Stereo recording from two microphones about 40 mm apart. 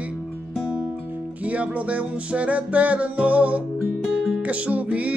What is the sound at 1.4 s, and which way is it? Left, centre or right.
Music, right.